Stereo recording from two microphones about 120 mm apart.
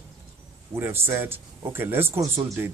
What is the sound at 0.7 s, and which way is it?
Speech, 20° right (ahead or behind).